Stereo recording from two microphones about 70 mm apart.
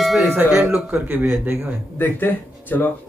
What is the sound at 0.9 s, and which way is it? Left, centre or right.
Speech, right.